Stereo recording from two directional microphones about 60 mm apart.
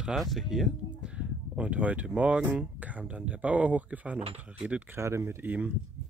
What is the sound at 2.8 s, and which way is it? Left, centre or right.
Speech, right.